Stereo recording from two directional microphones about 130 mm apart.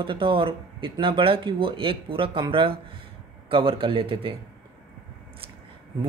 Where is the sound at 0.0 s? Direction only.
40° right (ahead or behind).